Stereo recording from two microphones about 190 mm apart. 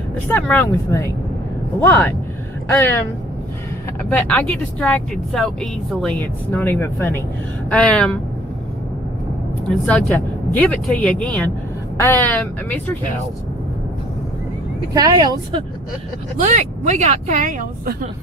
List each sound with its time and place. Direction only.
0.3 s speech: 10° left (ahead or behind)
4.0 s speech: 5° left (ahead or behind)
9.8 s speech: 10° left (ahead or behind)
15.0 s speech: 20° right (ahead or behind)
16.3 s speech: 40° right (ahead or behind)